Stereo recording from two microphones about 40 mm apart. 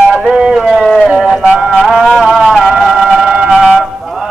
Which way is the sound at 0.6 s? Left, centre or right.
Centre.